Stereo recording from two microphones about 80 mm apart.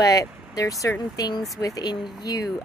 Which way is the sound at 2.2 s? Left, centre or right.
Left.